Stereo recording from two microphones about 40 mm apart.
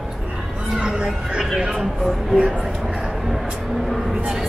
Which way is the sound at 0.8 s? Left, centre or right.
Right.